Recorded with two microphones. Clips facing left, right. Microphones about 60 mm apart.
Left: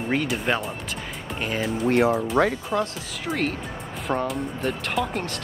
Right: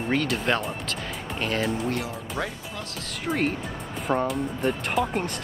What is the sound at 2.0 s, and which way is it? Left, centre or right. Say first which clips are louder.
Speech: left 11 dB; left.